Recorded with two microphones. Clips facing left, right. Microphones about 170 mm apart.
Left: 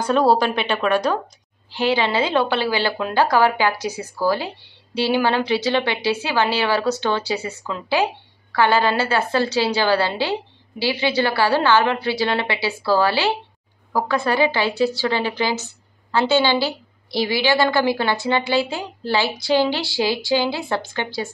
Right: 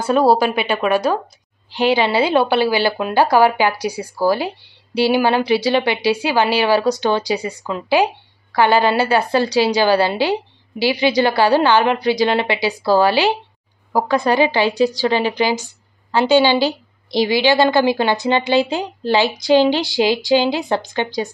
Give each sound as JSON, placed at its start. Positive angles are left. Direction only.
{"t": 0.0, "sound": "speech", "side_deg": -10}